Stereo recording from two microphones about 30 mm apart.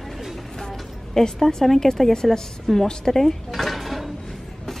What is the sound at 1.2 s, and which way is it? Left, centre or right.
Speech, centre.